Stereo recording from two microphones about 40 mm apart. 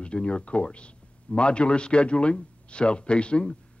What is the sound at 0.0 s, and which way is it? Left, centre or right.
A man's voice, left.